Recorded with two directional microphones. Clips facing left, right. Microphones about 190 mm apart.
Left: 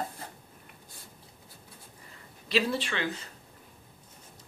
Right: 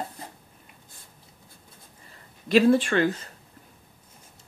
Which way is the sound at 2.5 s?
50° right (ahead or behind).